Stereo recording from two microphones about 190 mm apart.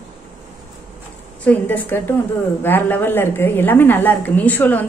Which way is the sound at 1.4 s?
10° left (ahead or behind).